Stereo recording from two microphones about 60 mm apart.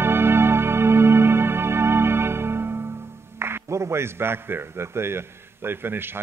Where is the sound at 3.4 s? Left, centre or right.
Right.